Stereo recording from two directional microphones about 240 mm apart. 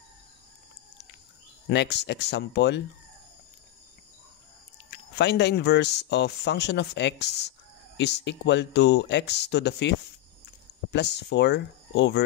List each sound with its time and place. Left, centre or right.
1.7 s speech: left
5.1 s speech: left